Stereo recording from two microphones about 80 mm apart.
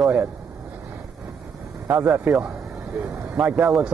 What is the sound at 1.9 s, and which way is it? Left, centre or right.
Speech, right.